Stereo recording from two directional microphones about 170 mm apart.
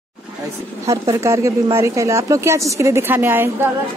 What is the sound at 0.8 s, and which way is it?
Speech, 15° right (ahead or behind).